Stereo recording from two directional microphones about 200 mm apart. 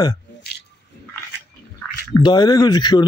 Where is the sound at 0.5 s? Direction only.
50° left (ahead or behind).